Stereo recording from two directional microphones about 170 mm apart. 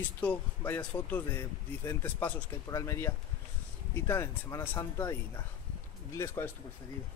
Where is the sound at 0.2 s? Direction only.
10° left (ahead or behind).